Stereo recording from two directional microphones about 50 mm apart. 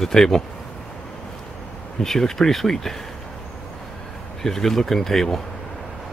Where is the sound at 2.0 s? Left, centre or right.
Centre.